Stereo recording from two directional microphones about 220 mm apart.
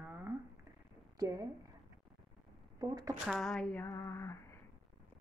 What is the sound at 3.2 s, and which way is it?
Speech, centre (ahead or behind).